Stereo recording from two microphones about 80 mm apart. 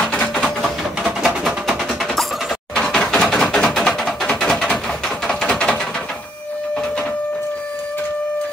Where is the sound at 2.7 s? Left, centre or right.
Centre.